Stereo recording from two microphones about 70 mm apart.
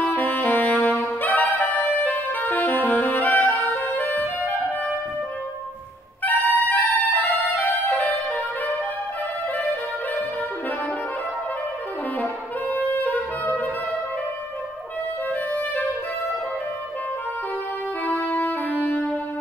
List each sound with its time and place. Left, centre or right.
0.0 s saxophone: left
6.2 s music: left
12.2 s saxophone: left
18.2 s saxophone: left